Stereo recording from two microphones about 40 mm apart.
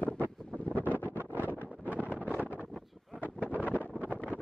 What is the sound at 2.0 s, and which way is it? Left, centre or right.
Wind noise, right.